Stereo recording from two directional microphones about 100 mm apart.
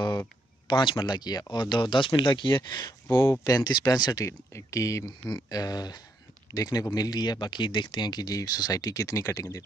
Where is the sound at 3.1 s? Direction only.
25° left (ahead or behind).